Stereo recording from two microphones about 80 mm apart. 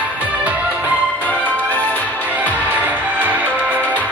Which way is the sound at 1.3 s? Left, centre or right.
Centre.